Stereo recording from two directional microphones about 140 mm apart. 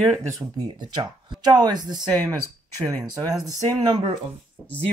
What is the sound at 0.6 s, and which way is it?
Speech, 30° right (ahead or behind).